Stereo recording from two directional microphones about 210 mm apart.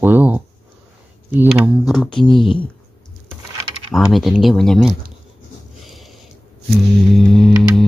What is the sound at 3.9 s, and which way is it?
Speech, centre (ahead or behind).